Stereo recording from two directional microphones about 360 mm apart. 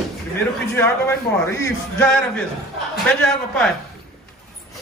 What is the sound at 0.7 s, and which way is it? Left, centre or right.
A man's voice, centre.